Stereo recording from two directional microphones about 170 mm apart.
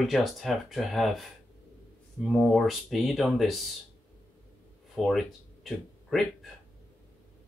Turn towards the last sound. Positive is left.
turn(degrees=0)  # may be behind; listen again after turning